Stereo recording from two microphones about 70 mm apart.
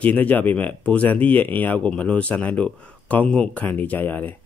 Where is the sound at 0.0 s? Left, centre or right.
Left.